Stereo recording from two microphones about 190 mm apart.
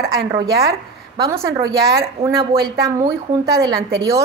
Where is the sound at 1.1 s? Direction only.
20° right (ahead or behind).